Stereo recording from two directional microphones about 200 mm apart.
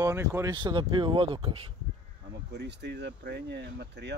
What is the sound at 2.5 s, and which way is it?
Speech, 55° right (ahead or behind).